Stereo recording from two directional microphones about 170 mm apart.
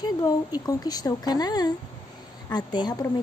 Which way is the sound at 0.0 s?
20° left (ahead or behind).